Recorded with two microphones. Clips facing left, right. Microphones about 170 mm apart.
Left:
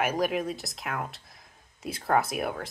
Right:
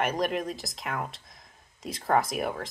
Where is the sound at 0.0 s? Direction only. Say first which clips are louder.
Left 1 dB; 5° left (ahead or behind).